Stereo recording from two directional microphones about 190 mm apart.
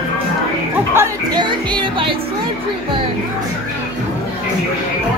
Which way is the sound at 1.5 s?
25° right (ahead or behind).